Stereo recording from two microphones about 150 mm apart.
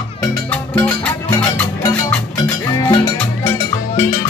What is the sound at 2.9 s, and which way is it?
Music, 25° left (ahead or behind).